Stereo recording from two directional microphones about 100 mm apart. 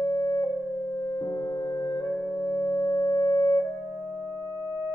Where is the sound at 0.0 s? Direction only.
40° left (ahead or behind).